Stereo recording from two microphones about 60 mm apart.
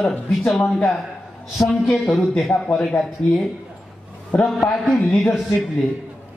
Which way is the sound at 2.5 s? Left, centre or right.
Left.